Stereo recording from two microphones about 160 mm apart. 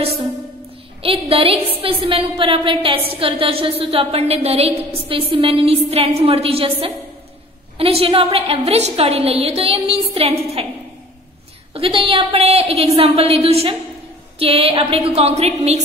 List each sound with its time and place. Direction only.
1.0 s a woman's voice: 35° right (ahead or behind)
11.7 s a woman's voice: 35° right (ahead or behind)